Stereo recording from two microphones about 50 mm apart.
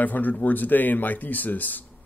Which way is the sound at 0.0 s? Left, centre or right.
Left.